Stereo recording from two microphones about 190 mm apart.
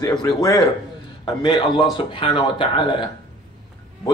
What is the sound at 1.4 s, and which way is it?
A man's voice, 25° left (ahead or behind).